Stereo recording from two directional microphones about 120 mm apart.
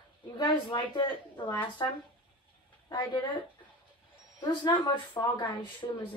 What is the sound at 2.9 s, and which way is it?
Speech, 40° left (ahead or behind).